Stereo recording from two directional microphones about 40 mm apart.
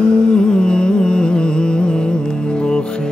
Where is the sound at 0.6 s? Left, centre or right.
Left.